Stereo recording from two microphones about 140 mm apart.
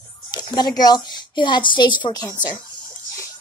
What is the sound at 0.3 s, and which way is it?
A woman's voice, 30° left (ahead or behind).